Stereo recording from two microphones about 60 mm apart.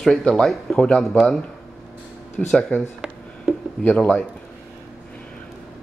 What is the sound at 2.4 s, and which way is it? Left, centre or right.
Speech, centre.